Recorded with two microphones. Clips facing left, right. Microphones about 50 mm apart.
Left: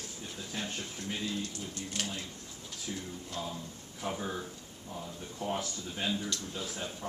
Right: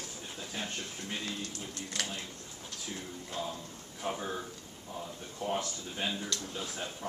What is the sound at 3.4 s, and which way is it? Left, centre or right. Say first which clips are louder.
Speech: right 2 dB; centre.